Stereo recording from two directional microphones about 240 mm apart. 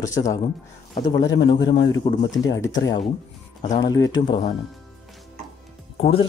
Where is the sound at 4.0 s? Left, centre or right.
Centre.